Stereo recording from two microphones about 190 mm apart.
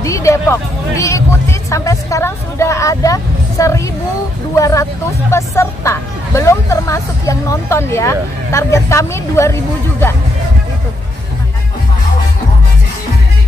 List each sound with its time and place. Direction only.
0.0 s speech: 15° left (ahead or behind)